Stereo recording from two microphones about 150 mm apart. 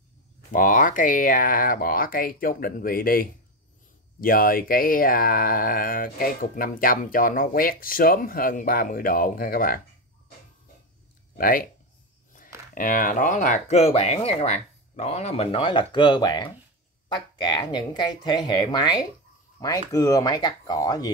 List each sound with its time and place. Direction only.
0.5 s speech: 60° left (ahead or behind)
11.3 s speech: 70° left (ahead or behind)
12.7 s speech: 65° left (ahead or behind); by 21.1 s 25° left (ahead or behind)